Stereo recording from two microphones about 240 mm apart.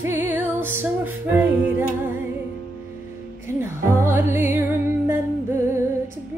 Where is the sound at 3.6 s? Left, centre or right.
Centre.